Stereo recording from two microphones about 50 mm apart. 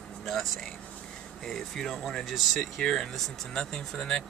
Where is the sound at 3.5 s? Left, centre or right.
Centre.